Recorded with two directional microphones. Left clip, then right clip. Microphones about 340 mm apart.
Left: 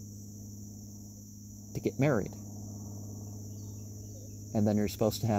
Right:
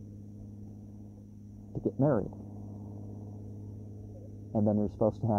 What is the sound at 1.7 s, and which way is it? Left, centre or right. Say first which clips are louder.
Speech: right 1 dB; left.